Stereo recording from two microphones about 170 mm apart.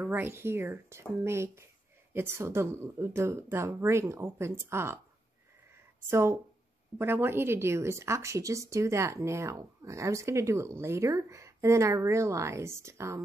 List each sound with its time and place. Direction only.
0.0 s speech: 15° right (ahead or behind)
6.0 s speech: 15° right (ahead or behind)